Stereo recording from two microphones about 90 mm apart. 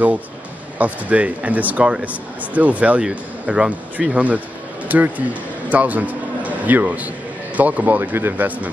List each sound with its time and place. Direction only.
0.7 s speech: 15° right (ahead or behind)